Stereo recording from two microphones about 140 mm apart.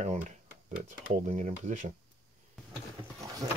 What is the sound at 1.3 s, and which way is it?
Speech, 55° right (ahead or behind).